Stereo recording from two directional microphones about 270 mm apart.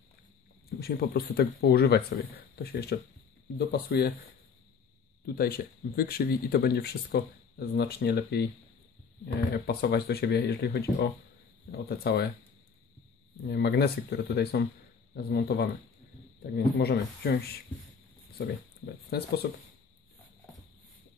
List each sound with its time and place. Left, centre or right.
0.7 s speech: left
5.2 s speech: left
13.5 s speech: left
19.0 s speech: left